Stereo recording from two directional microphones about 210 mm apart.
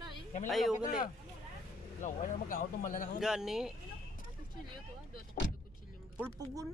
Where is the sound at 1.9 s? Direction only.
40° left (ahead or behind).